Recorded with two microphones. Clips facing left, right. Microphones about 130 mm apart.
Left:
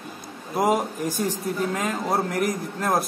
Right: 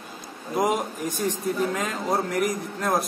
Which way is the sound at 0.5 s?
5° left (ahead or behind).